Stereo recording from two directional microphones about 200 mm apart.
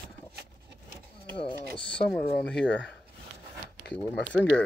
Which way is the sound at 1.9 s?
5° left (ahead or behind).